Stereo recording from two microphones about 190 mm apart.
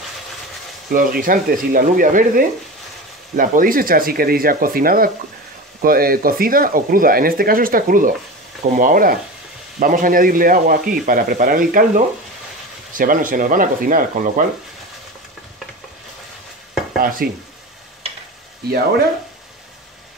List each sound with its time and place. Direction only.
0.8 s speech: 50° right (ahead or behind)
17.0 s speech: 50° right (ahead or behind)